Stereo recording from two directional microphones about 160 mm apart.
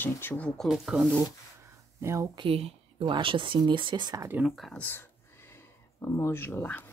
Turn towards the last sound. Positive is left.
turn(degrees=10)  # may be behind; listen again after turning